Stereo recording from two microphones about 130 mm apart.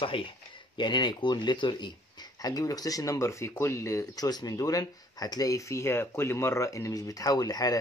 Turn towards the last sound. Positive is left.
turn(degrees=30)  # may be behind; listen again after turning